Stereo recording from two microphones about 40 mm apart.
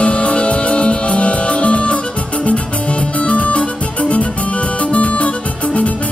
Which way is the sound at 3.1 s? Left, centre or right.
Left.